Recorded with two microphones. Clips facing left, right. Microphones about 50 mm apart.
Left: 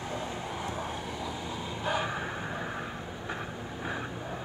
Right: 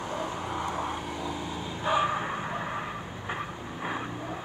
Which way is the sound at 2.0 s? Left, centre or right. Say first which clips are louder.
Right 9 dB; right.